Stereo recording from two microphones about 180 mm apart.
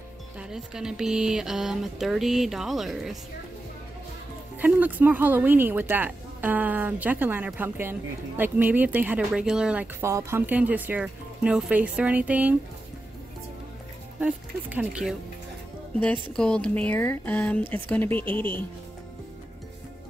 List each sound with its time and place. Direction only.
0.4 s speech: 5° right (ahead or behind)
4.6 s speech: 10° right (ahead or behind)
14.2 s speech: 5° right (ahead or behind)
16.0 s speech: 5° left (ahead or behind)